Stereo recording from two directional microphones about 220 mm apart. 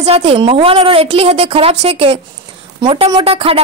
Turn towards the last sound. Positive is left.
turn(degrees=-25)  # may be behind; listen again after turning